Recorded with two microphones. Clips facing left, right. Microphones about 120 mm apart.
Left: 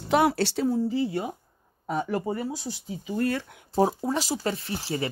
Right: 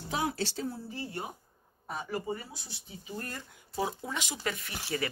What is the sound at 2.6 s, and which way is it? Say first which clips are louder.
Speech: left 13 dB; 90° left.